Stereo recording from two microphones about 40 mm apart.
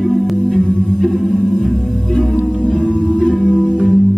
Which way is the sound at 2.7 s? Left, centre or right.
Left.